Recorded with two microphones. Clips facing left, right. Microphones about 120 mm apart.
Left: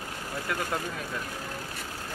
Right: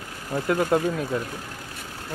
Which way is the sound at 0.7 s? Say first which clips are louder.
Right 12 dB; 30° right (ahead or behind).